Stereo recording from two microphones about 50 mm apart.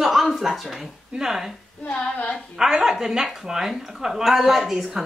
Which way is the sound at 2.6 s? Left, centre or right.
Centre.